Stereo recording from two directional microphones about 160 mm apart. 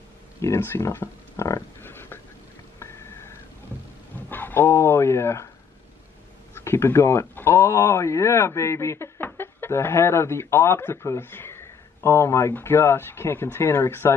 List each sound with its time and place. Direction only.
0.4 s speech: 15° left (ahead or behind)
2.8 s a sound: 15° left (ahead or behind)
4.3 s speech: 10° left (ahead or behind)
6.5 s speech: 15° left (ahead or behind)